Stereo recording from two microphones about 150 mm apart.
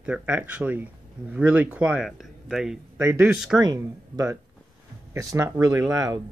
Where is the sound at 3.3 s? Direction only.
5° right (ahead or behind).